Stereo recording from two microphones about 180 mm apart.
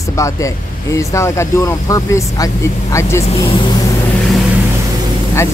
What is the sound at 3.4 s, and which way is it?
Vehicle, 25° left (ahead or behind).